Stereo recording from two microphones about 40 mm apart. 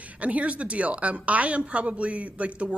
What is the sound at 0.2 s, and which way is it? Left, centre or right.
Speech, right.